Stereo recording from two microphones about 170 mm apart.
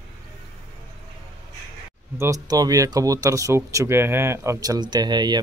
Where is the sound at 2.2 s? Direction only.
20° right (ahead or behind).